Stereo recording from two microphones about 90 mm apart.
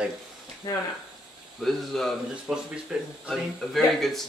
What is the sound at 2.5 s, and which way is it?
Speech, 15° right (ahead or behind).